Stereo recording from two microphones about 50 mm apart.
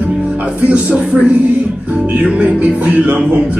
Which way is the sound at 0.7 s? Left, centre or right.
Right.